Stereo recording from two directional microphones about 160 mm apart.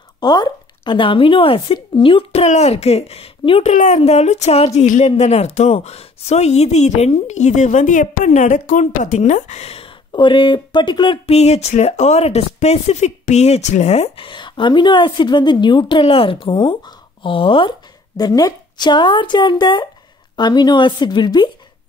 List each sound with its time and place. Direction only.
0.2 s speech: 25° left (ahead or behind)
3.7 s speech: 50° left (ahead or behind); by 11.3 s 30° left (ahead or behind)
11.3 s a woman's voice: 40° left (ahead or behind)